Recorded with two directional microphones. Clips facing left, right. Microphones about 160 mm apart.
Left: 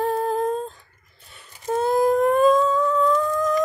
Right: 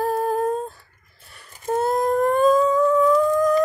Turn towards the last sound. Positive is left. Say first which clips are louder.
# right 4 dB
turn(degrees=-10)  # may be behind; listen again after turning